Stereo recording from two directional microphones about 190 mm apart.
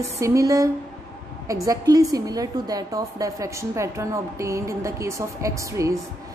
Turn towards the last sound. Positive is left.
turn(degrees=-15)  # may be behind; listen again after turning